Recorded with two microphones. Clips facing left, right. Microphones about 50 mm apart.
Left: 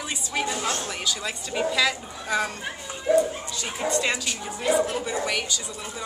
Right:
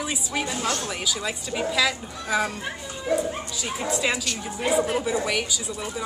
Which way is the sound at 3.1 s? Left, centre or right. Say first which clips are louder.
Left 5 dB; centre.